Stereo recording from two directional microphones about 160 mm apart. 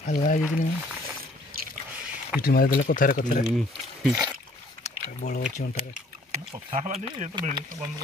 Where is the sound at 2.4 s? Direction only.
65° left (ahead or behind).